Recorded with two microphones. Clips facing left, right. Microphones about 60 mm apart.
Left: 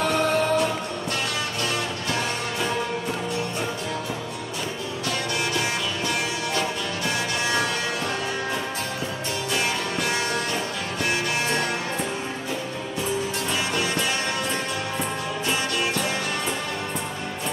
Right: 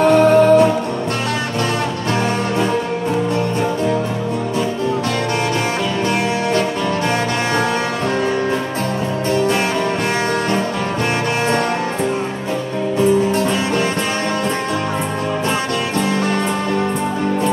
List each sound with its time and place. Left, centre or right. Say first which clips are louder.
0.0 s music: right 11 dB; right
13.3 s music: right 9 dB; right